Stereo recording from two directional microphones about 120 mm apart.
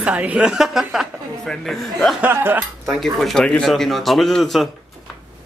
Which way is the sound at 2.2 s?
15° right (ahead or behind).